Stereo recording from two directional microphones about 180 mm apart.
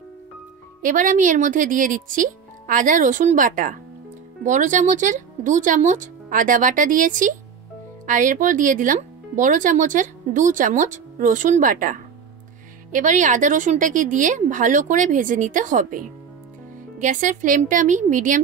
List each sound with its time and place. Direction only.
0.8 s speech: 45° right (ahead or behind)
17.0 s speech: 45° right (ahead or behind)